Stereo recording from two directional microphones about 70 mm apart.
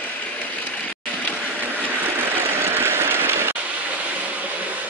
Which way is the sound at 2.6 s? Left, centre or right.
Right.